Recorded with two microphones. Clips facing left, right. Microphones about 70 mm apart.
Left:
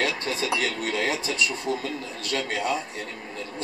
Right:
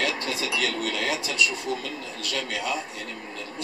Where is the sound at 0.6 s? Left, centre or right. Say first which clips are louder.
Left 1 dB; left.